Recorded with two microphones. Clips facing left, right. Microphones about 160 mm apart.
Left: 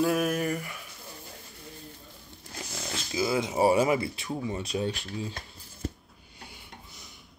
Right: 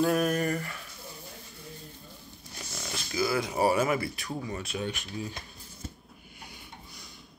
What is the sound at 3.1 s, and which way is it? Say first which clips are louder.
Speech: left 1 dB; 20° left (ahead or behind).